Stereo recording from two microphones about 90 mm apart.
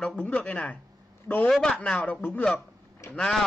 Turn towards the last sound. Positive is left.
turn(degrees=5)  # may be behind; listen again after turning